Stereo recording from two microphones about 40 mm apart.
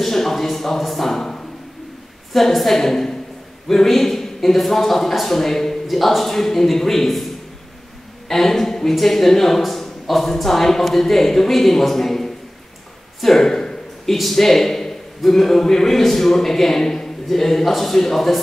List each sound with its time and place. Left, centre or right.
0.0 s a woman's voice: centre
13.2 s a sound: centre
14.3 s a man's voice: centre